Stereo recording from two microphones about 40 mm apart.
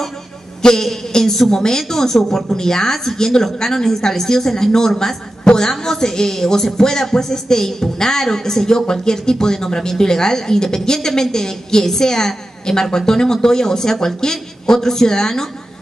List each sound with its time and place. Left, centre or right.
0.6 s a man's voice: centre